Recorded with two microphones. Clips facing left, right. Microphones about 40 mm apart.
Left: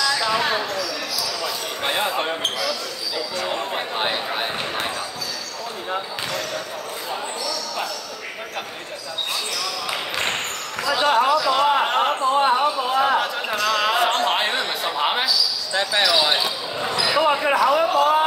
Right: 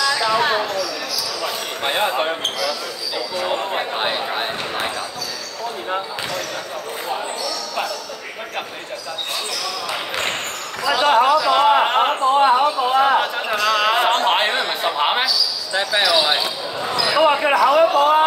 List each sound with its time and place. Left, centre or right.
0.4 s a sound: right
1.4 s basketball bounce: centre
2.1 s speech: centre
10.9 s basketball bounce: right
11.4 s a sound: right
15.7 s speech: centre
17.2 s speech: right